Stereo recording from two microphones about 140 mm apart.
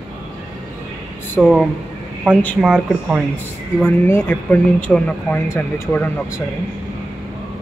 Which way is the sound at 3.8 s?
15° left (ahead or behind).